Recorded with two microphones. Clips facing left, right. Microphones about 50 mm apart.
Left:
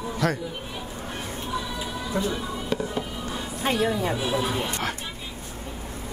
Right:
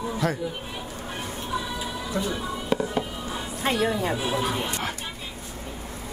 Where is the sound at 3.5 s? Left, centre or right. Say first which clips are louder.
Even; right.